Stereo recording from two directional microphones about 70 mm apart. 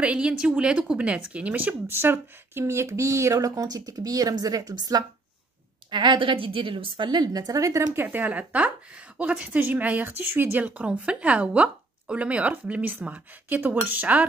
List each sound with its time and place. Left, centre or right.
0.0 s a woman's voice: centre; by 3.3 s right
3.3 s speech: right
7.1 s speech: right
7.9 s a woman's voice: right
10.6 s a woman's voice: centre